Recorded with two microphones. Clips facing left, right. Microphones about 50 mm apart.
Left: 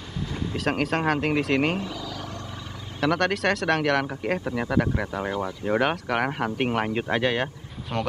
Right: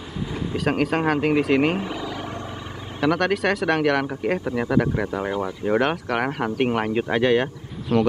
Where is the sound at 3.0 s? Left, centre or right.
Centre.